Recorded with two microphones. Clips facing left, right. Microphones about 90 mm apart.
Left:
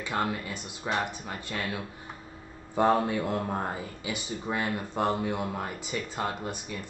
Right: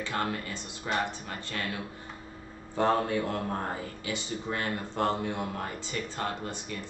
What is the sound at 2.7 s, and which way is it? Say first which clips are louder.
Speech: left 2 dB; 15° left (ahead or behind).